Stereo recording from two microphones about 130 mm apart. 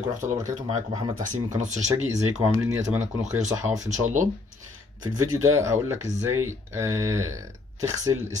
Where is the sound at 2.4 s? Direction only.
15° right (ahead or behind).